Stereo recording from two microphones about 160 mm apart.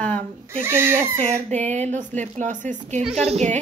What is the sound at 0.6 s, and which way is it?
Speech, 15° right (ahead or behind).